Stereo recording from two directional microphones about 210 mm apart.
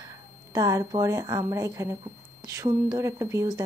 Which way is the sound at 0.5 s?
15° right (ahead or behind).